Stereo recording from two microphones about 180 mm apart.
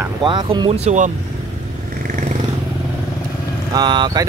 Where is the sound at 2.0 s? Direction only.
45° right (ahead or behind).